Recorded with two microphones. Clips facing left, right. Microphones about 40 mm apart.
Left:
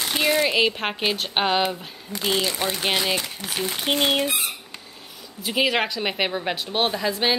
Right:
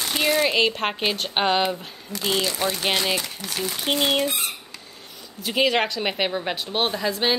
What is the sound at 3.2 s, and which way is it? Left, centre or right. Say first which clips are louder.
Speech: left 1 dB; centre.